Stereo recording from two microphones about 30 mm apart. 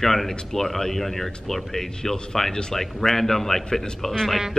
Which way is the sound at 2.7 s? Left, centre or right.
Centre.